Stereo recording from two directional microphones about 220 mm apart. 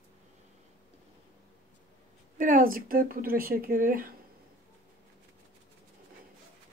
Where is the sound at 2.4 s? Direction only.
40° right (ahead or behind).